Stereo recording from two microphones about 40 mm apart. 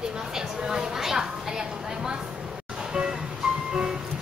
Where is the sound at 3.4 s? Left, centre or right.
Centre.